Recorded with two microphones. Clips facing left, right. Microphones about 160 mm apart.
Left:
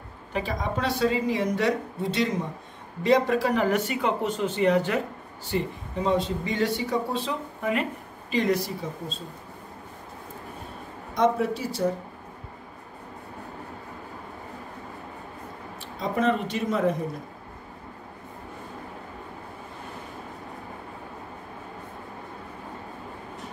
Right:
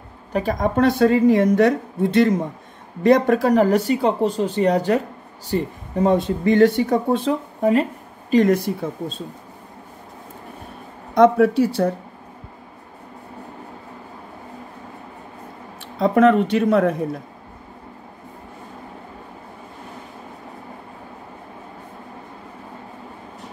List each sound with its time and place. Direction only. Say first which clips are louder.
0.3 s speech: right 8 dB; 45° right (ahead or behind)
5.5 s speech: right 5 dB; 50° right (ahead or behind)
7.6 s speech: right 10 dB; 35° right (ahead or behind)
8.3 s speech: right 8 dB; 50° right (ahead or behind)
11.1 s speech: right 10 dB; 65° right (ahead or behind)
16.0 s speech: right 10 dB; 65° right (ahead or behind)